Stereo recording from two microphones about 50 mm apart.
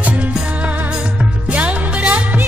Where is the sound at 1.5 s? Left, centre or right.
Right.